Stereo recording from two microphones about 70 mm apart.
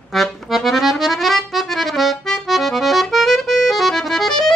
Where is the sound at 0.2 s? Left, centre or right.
Centre.